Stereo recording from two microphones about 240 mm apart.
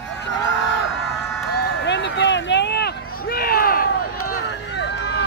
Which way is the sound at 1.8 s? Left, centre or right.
Left.